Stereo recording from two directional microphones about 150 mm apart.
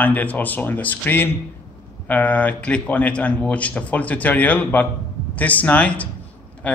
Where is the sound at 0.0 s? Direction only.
10° left (ahead or behind).